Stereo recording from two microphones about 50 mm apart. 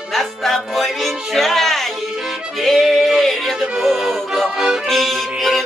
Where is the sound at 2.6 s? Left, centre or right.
Centre.